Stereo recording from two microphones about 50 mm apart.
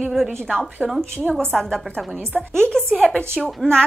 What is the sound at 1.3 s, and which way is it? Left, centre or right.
Speech, right.